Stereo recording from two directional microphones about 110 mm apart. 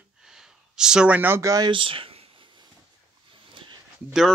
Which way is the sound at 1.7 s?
50° right (ahead or behind).